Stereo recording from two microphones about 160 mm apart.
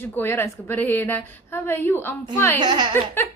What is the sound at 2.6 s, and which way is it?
Speech, 25° right (ahead or behind).